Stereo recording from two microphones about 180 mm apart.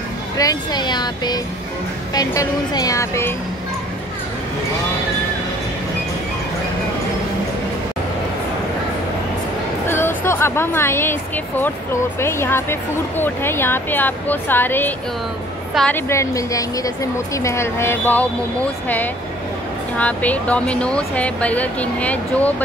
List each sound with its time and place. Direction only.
0.4 s speech: 20° left (ahead or behind)
9.8 s a woman's voice: 15° left (ahead or behind)
16.1 s speech: 15° left (ahead or behind)